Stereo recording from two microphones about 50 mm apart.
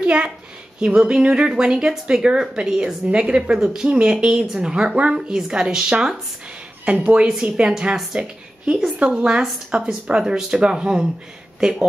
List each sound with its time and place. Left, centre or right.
0.0 s a woman's voice: centre
6.9 s speech: right
7.5 s speech: centre